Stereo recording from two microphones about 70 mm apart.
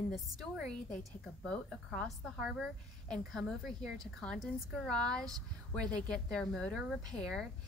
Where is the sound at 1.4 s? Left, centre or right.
Centre.